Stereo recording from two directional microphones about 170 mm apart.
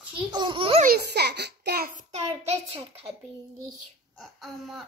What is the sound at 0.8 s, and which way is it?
A child's voice, 70° right (ahead or behind).